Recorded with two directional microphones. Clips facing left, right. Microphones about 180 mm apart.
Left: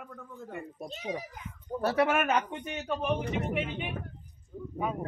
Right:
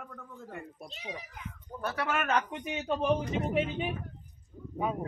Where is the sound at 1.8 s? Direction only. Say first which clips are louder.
Left 8 dB; 30° left (ahead or behind).